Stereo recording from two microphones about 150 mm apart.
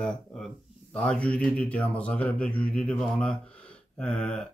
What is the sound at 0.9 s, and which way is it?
Speech, 5° left (ahead or behind).